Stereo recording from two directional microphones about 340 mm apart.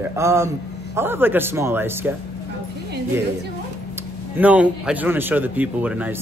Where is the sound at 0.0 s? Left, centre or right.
Centre.